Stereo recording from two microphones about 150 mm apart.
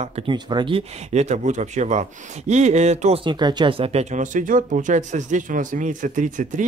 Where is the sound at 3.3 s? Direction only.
30° right (ahead or behind).